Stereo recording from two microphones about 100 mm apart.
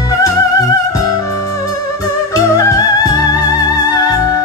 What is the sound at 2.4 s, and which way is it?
Music, 35° left (ahead or behind).